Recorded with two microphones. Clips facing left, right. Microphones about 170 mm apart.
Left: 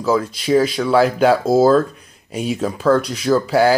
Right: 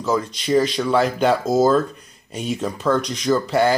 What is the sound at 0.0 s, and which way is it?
Speech, 5° left (ahead or behind).